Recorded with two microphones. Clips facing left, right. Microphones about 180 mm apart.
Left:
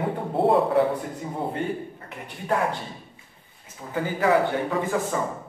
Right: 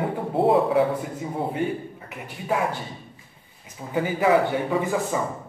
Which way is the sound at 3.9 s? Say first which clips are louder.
Right 2 dB; 15° right (ahead or behind).